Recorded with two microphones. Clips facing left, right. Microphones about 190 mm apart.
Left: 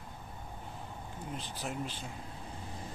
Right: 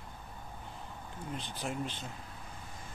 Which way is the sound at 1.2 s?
5° left (ahead or behind).